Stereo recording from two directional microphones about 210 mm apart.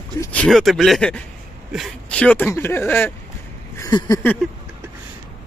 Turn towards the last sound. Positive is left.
turn(degrees=15)  # may be behind; listen again after turning